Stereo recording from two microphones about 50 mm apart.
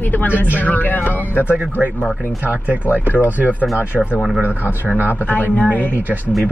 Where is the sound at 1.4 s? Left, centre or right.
Right.